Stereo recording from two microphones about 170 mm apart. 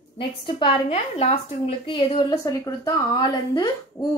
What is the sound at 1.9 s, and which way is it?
A woman's voice, 25° left (ahead or behind).